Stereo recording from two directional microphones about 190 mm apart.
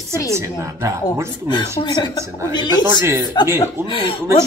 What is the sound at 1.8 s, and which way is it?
A woman's voice, 25° left (ahead or behind).